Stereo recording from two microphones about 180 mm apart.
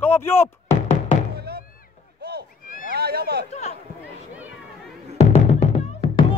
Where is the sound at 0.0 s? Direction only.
15° left (ahead or behind).